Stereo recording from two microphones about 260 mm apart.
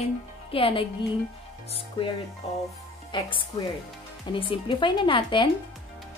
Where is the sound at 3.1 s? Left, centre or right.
Centre.